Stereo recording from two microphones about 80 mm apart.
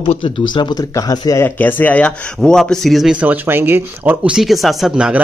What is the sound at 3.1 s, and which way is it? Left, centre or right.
Speech, centre.